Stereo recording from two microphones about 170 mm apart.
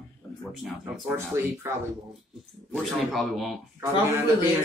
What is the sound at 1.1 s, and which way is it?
Speech, 15° right (ahead or behind).